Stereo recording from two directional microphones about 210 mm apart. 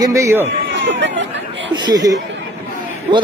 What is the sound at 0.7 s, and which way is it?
Chatter, 60° right (ahead or behind).